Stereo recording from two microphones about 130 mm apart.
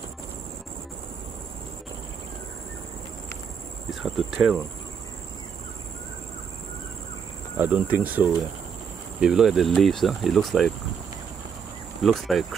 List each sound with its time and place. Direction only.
3.9 s speech: centre (ahead or behind)
7.5 s speech: 15° right (ahead or behind)
12.0 s speech: centre (ahead or behind)